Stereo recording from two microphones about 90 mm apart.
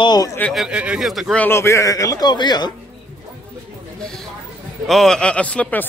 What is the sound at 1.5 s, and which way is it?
A man's voice, 30° left (ahead or behind).